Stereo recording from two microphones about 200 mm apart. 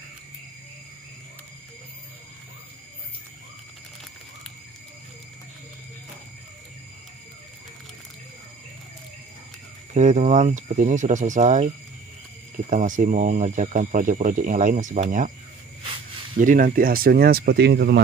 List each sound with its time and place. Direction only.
9.9 s speech: 35° right (ahead or behind)
16.3 s speech: 45° right (ahead or behind)